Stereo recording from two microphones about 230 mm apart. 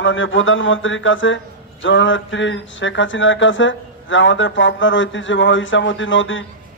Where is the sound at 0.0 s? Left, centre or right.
Left.